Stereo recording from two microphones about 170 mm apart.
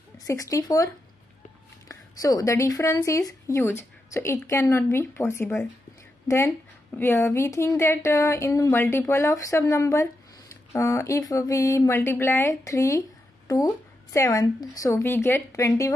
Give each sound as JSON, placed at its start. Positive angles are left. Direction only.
{"t": 0.3, "sound": "speech", "side_deg": 20}
{"t": 1.9, "sound": "a woman's voice", "side_deg": 20}